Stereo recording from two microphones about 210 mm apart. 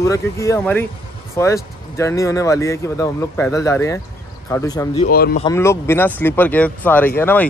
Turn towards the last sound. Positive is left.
turn(degrees=10)  # may be behind; listen again after turning